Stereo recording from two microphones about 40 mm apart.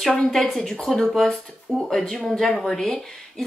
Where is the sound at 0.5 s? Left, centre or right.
Centre.